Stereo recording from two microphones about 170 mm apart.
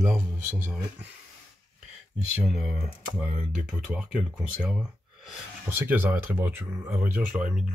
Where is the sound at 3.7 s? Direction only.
5° right (ahead or behind).